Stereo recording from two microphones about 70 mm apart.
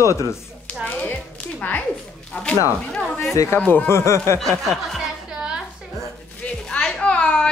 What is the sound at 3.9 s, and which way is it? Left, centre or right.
Speech, left.